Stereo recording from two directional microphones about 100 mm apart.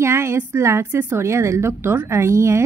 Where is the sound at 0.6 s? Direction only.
25° right (ahead or behind).